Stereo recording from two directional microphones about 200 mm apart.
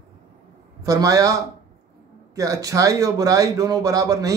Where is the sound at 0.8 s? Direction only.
15° right (ahead or behind).